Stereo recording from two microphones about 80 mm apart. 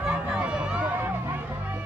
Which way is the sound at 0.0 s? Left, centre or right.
Centre.